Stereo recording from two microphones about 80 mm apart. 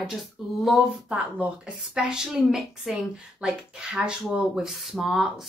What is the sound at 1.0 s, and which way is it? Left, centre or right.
A child's voice, centre.